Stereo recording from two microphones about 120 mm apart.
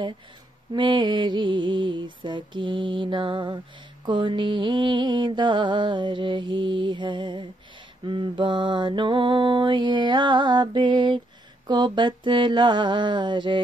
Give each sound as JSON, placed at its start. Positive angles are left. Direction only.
{"t": 0.7, "sound": "mantra", "side_deg": -40}